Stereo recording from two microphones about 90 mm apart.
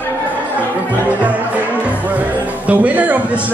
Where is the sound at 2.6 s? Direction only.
15° right (ahead or behind).